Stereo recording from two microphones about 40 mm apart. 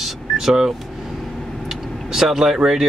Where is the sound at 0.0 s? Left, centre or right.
Centre.